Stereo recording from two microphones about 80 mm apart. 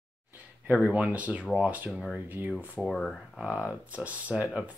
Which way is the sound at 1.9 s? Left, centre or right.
Centre.